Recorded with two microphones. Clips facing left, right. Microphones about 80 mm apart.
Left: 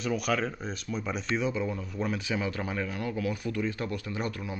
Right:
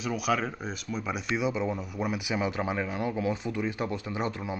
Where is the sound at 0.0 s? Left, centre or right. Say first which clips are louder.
Even; centre.